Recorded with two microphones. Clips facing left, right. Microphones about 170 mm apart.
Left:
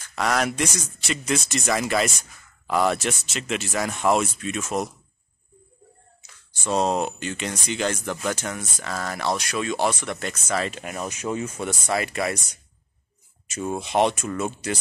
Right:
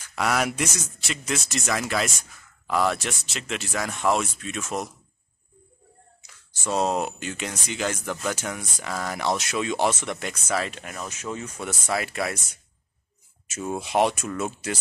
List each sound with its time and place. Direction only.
0.0 s speech: 10° right (ahead or behind)
6.2 s speech: 5° right (ahead or behind)
11.1 s speech: 15° left (ahead or behind)
11.9 s speech: centre (ahead or behind)
13.5 s speech: 5° right (ahead or behind)